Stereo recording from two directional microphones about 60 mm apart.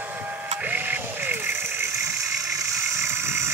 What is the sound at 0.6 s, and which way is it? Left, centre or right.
Music, right.